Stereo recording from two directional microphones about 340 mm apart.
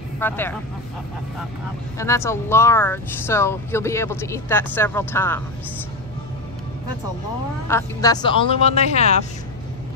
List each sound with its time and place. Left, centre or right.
0.2 s speech: centre
2.0 s speech: centre
7.6 s speech: centre